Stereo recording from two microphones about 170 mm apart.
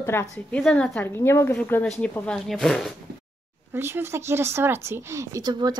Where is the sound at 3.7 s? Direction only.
15° right (ahead or behind).